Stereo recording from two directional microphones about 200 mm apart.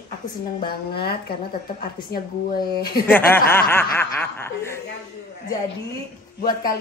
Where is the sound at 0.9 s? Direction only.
50° left (ahead or behind).